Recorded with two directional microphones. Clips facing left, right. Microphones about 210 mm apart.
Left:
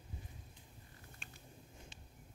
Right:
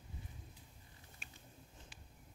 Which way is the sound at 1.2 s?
5° right (ahead or behind).